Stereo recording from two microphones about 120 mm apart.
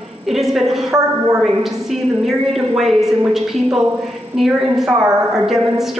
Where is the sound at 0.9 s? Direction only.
25° right (ahead or behind).